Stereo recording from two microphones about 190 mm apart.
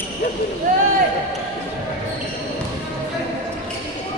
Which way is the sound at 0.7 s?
45° right (ahead or behind).